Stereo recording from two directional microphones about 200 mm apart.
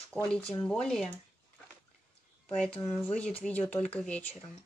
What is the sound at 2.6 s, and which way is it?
Speech, 5° left (ahead or behind).